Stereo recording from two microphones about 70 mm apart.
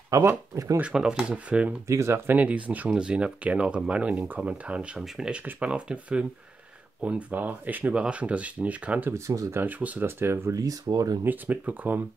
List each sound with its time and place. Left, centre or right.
0.1 s speech: right
0.7 s speech: centre
1.9 s speech: right
2.3 s speech: right
5.0 s speech: centre
5.3 s speech: centre
9.1 s speech: right
9.6 s speech: right
10.0 s speech: right
10.5 s speech: right
11.2 s speech: right